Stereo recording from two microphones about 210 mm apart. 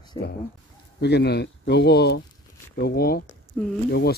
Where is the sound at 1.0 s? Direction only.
50° left (ahead or behind).